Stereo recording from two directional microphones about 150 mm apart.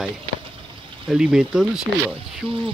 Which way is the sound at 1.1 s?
5° right (ahead or behind).